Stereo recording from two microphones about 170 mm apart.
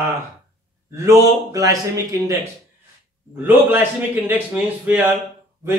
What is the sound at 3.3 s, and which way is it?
A man's voice, 10° right (ahead or behind).